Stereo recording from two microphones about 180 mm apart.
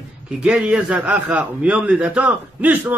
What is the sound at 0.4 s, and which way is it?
A man's voice, 5° right (ahead or behind).